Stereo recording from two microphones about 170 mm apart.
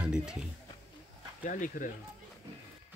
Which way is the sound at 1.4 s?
50° left (ahead or behind).